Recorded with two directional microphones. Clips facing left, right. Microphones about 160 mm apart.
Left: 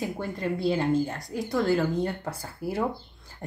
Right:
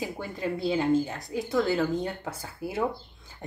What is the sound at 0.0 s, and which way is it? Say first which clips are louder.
Speech: left 2 dB; 5° right (ahead or behind).